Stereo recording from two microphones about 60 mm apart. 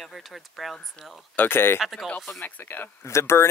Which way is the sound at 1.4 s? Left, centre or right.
Left.